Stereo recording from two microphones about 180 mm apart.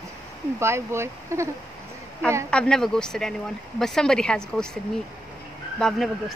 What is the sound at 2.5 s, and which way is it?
Speech, 5° left (ahead or behind).